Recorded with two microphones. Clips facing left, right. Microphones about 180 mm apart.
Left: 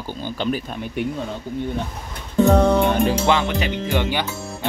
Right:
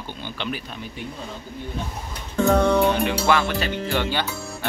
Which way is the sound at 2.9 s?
40° left (ahead or behind).